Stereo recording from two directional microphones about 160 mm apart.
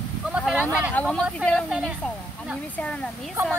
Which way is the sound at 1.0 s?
Centre (ahead or behind).